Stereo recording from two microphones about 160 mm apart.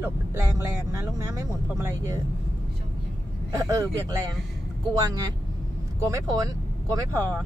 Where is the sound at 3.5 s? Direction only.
20° right (ahead or behind).